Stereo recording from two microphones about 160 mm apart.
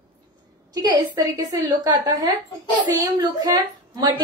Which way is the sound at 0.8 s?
25° right (ahead or behind).